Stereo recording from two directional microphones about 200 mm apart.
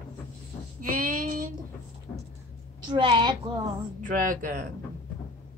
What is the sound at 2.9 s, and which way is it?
Speech, 25° right (ahead or behind).